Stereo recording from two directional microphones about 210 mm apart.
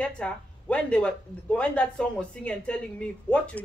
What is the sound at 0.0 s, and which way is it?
Speech, 5° left (ahead or behind).